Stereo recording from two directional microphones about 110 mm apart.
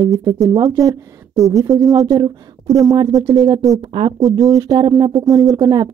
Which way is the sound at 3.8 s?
55° right (ahead or behind).